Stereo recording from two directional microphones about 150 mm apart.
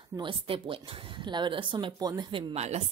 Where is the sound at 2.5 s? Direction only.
45° right (ahead or behind).